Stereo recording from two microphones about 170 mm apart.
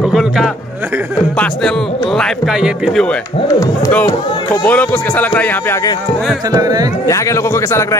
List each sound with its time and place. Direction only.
0.0 s music: centre (ahead or behind)
2.1 s speech: centre (ahead or behind)
4.6 s speech: 10° left (ahead or behind)
6.5 s speech: 20° right (ahead or behind)
7.1 s speech: 20° left (ahead or behind)